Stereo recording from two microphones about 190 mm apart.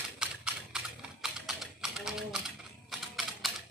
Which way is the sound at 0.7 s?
Centre (ahead or behind).